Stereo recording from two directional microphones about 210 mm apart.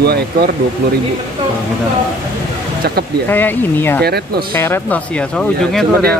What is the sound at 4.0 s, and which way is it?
Speech, 50° right (ahead or behind).